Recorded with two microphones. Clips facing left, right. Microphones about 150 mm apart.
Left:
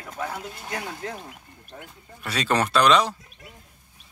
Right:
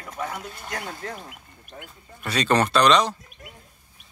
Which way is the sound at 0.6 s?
15° left (ahead or behind).